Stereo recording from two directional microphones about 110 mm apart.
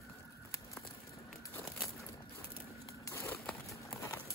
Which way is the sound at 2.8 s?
30° left (ahead or behind).